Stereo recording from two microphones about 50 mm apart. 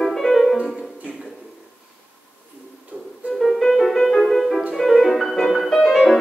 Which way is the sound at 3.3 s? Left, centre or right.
Centre.